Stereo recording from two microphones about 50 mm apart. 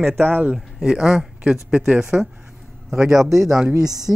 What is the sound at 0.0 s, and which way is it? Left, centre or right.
Speech, right.